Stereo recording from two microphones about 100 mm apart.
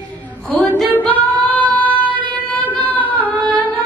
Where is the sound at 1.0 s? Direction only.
15° left (ahead or behind).